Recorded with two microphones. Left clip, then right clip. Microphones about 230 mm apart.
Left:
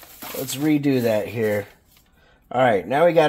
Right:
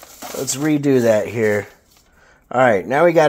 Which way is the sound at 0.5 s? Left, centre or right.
Right.